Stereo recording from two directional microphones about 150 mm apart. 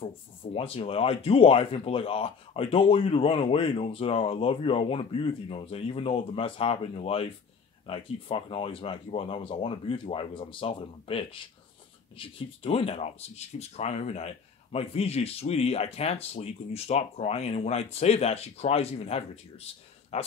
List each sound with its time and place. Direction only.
0.0 s speech: 40° left (ahead or behind)